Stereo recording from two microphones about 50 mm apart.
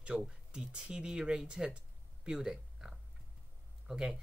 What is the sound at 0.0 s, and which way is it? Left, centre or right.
Speech, centre.